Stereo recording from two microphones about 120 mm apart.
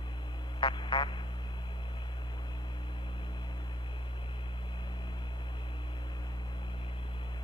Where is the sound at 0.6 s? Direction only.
40° left (ahead or behind).